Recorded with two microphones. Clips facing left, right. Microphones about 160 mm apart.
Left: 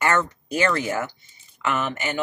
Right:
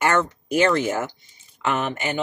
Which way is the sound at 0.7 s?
20° right (ahead or behind).